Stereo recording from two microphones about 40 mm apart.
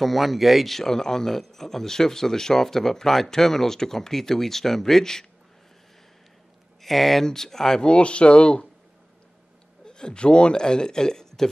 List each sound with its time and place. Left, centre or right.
0.0 s a man's voice: centre
6.8 s a man's voice: centre
7.8 s speech: left
9.8 s a man's voice: centre